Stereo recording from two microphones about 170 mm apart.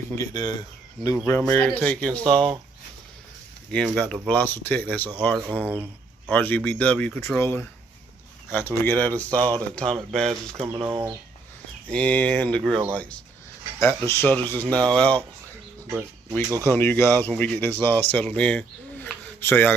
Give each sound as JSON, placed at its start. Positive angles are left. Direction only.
{"t": 0.2, "sound": "speech", "side_deg": 25}
{"t": 1.2, "sound": "speech", "side_deg": 10}
{"t": 3.7, "sound": "speech", "side_deg": 5}
{"t": 5.6, "sound": "speech", "side_deg": -10}
{"t": 6.3, "sound": "speech", "side_deg": 10}
{"t": 10.6, "sound": "speech", "side_deg": -30}
{"t": 11.9, "sound": "speech", "side_deg": 10}
{"t": 15.9, "sound": "speech", "side_deg": -15}
{"t": 16.6, "sound": "speech", "side_deg": 15}